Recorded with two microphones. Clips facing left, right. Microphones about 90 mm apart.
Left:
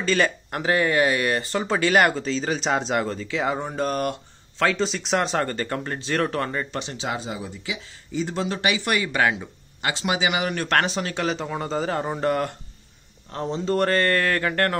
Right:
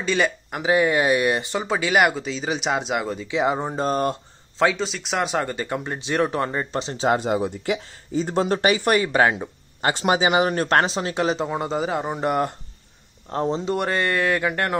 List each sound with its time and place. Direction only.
0.0 s speech: 10° right (ahead or behind); by 4.6 s 25° right (ahead or behind)
4.6 s speech: 5° right (ahead or behind); by 7.1 s 30° right (ahead or behind)
7.1 s speech: 55° right (ahead or behind); by 12.5 s 20° right (ahead or behind)
13.3 s speech: 35° right (ahead or behind)
13.7 s speech: 10° right (ahead or behind)